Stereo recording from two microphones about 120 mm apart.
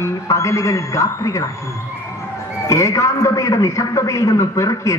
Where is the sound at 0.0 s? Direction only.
25° left (ahead or behind).